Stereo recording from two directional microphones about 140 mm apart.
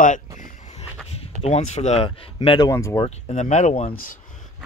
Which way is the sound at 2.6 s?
20° left (ahead or behind).